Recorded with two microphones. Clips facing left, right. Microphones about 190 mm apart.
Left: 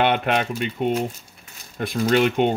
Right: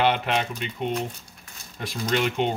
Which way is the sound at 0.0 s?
55° left (ahead or behind).